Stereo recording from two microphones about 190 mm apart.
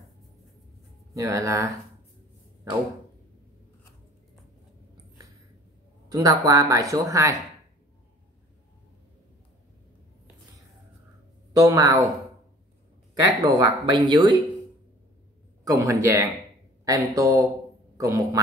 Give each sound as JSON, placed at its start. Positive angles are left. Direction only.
{"t": 1.1, "sound": "speech", "side_deg": -15}
{"t": 6.0, "sound": "speech", "side_deg": -20}
{"t": 11.5, "sound": "speech", "side_deg": -20}
{"t": 13.2, "sound": "speech", "side_deg": -20}
{"t": 15.6, "sound": "speech", "side_deg": -15}